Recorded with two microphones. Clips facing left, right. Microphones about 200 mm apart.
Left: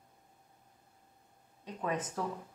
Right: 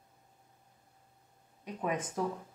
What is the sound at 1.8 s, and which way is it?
Speech, 15° right (ahead or behind).